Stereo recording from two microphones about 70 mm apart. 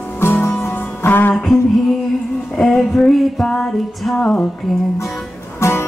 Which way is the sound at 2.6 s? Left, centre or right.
Centre.